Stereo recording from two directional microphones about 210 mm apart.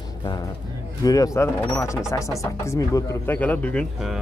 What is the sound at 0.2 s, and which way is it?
Vehicle, 20° left (ahead or behind).